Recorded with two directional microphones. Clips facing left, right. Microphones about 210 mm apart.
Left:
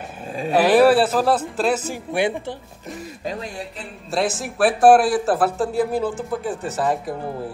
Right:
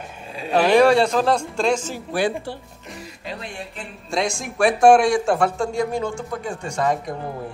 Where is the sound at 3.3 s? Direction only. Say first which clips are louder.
Left 4 dB; 40° left (ahead or behind).